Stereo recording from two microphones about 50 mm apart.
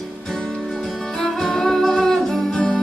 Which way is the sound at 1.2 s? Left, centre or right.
Centre.